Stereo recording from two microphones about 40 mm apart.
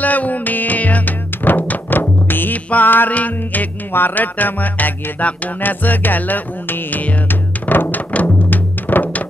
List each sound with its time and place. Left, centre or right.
0.0 s music: left
3.1 s music: left
3.9 s music: left
7.2 s music: left